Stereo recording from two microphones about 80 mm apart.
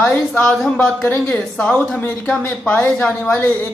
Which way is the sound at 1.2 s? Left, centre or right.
Centre.